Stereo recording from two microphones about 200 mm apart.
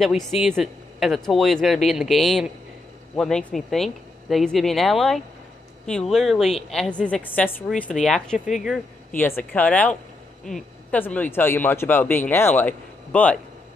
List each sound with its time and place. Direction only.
0.0 s a woman's voice: centre (ahead or behind)